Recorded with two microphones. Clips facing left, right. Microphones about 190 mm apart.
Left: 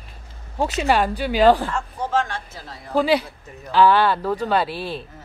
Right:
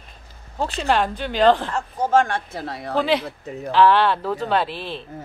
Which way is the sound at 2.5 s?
65° right (ahead or behind).